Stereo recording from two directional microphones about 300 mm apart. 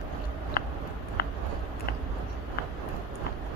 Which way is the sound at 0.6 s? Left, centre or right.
Left.